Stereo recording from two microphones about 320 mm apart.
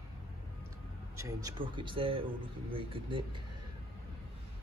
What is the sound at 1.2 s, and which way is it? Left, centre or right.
A man's voice, centre.